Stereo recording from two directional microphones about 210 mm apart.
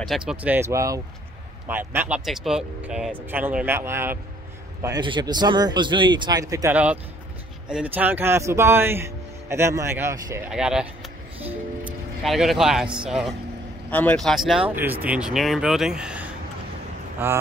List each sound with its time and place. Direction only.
0.0 s speech: centre (ahead or behind)
12.2 s speech: centre (ahead or behind)